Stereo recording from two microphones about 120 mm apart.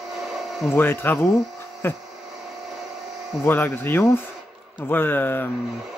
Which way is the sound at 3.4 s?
15° left (ahead or behind).